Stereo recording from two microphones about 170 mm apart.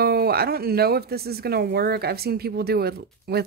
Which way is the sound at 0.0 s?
65° right (ahead or behind).